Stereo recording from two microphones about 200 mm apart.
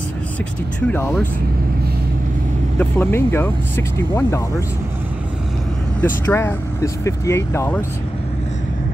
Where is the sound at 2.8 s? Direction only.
10° left (ahead or behind).